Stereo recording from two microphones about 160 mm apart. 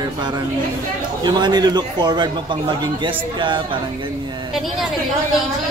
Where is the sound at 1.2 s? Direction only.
25° right (ahead or behind).